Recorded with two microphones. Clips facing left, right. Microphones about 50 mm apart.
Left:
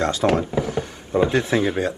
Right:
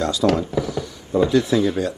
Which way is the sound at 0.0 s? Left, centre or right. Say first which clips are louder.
Even; left.